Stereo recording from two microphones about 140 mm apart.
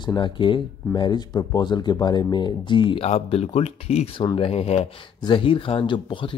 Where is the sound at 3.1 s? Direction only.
45° left (ahead or behind).